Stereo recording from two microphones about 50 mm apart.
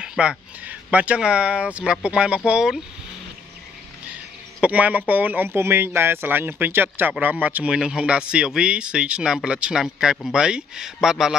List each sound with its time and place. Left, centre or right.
0.0 s a sound: centre
0.8 s speech: right
4.6 s speech: right
5.5 s speech: right
7.7 s speech: centre
11.0 s speech: centre